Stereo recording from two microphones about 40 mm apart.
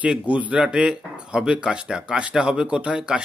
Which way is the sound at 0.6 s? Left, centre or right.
Right.